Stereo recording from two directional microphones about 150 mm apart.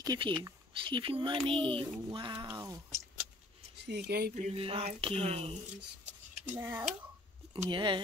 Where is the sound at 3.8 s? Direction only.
90° right.